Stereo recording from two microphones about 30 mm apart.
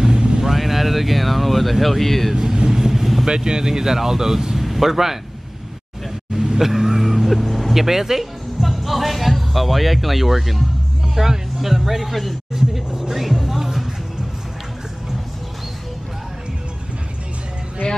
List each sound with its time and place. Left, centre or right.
0.0 s vehicle: right
0.6 s speech: centre
2.5 s vehicle: right
2.8 s vehicle: centre
3.3 s speech: right; by 5.2 s centre
6.6 s vehicle: centre
7.8 s speech: centre
8.6 s speech: centre
12.5 s speech: centre
13.1 s music: centre